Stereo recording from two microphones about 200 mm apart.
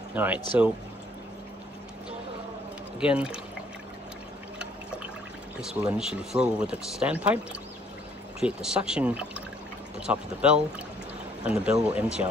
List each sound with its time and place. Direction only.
0.1 s speech: 10° right (ahead or behind)
3.0 s speech: 5° right (ahead or behind)
5.6 s speech: 5° right (ahead or behind)
8.4 s speech: 5° right (ahead or behind)